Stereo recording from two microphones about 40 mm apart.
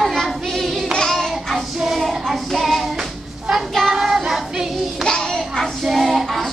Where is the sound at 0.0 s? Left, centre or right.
Centre.